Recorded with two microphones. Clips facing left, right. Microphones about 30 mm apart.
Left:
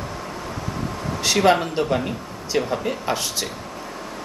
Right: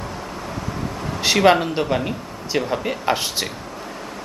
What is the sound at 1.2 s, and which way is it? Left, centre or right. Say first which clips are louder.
Speech: right 2 dB; centre.